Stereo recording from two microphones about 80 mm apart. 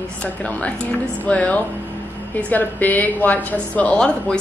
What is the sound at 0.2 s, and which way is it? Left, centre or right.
A woman's voice, centre.